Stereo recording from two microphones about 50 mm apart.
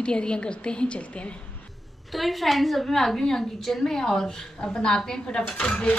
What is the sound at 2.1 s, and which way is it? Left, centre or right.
A woman's voice, centre.